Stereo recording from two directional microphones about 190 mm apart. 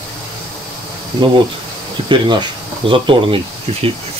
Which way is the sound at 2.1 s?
25° right (ahead or behind).